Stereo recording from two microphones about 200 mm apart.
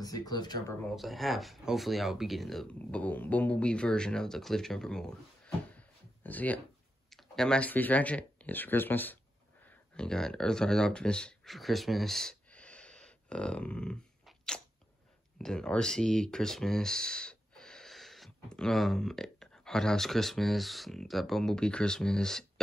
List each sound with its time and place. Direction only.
0.0 s speech: 20° left (ahead or behind)
0.8 s speech: centre (ahead or behind)
5.7 s a sound: 5° left (ahead or behind)
7.1 s speech: centre (ahead or behind)